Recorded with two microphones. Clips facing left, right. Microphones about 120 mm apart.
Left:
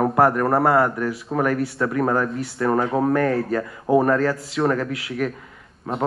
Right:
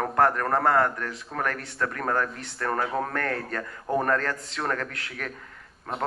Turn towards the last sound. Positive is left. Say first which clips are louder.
# left 6 dB
turn(degrees=5)  # may be behind; listen again after turning